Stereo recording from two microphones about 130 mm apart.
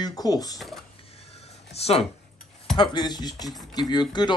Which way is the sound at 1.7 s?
55° left (ahead or behind).